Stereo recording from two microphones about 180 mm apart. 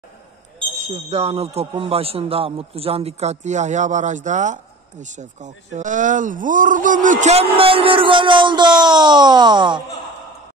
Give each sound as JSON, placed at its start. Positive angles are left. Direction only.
{"t": 0.6, "sound": "speech", "side_deg": -35}